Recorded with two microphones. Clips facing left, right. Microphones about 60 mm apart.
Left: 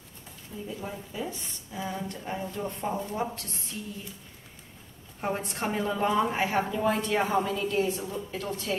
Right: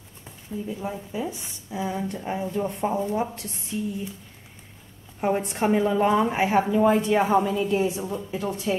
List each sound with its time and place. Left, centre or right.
0.7 s a woman's voice: centre
5.2 s a woman's voice: centre